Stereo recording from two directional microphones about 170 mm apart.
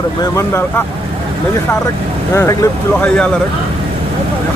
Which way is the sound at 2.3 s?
15° left (ahead or behind).